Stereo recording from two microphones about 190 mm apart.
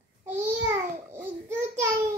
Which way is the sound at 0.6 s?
15° right (ahead or behind).